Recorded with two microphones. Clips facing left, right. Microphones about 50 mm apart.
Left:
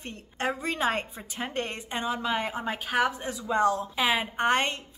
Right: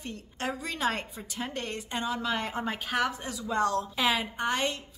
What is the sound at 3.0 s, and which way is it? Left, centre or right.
Speech, left.